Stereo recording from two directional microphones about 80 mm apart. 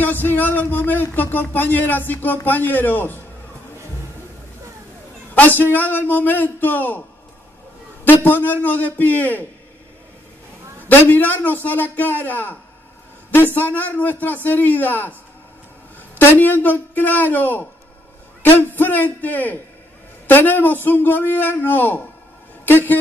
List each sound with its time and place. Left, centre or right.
0.0 s speech: left
5.3 s speech: left
8.0 s speech: left
10.9 s speech: left
16.2 s speech: left